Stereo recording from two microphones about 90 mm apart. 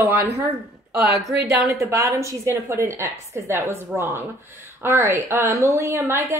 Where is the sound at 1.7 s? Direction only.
35° right (ahead or behind).